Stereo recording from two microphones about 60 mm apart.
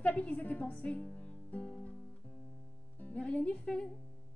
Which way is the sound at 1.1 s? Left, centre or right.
Left.